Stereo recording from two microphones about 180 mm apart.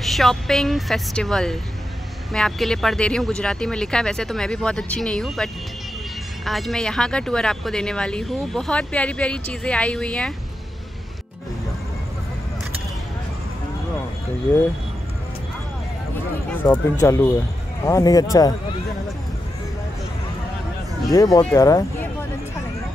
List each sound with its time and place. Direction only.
0.0 s speech: centre (ahead or behind)
16.4 s speech: 10° left (ahead or behind)
21.1 s speech: 20° left (ahead or behind)